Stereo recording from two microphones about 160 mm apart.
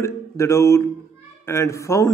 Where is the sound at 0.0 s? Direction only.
15° left (ahead or behind).